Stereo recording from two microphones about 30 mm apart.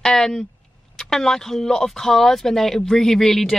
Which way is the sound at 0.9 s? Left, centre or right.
Centre.